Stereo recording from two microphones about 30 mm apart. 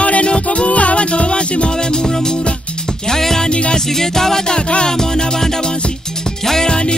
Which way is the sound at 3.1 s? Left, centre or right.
Centre.